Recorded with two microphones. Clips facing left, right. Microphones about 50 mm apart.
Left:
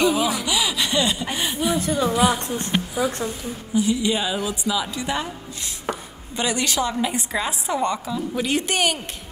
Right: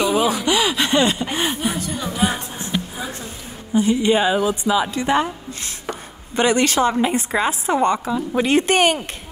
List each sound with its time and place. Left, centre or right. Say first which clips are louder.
0.1 s a sound: right 4 dB; right
0.5 s gasp: right 5 dB; right
1.3 s a woman's voice: right 1 dB; right
1.8 s speech: left 4 dB; left
2.6 s a woman's voice: left 3 dB; left
3.7 s a woman's voice: right 5 dB; right
5.9 s chopping: left 2 dB; centre
6.3 s a woman's voice: right 6 dB; right